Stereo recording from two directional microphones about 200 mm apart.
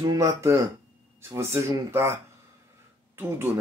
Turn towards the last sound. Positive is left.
turn(degrees=-10)  # may be behind; listen again after turning